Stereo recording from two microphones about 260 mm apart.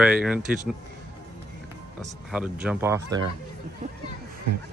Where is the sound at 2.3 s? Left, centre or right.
Centre.